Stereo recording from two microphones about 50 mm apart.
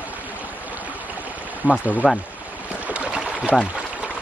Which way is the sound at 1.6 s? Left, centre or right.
Right.